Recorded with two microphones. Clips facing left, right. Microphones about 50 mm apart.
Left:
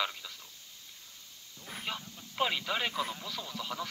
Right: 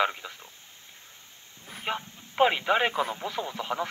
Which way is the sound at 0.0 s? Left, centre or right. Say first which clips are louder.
Right 8 dB; right.